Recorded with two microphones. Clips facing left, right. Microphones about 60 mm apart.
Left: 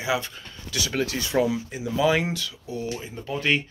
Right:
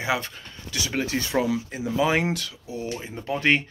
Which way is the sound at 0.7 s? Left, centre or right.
Right.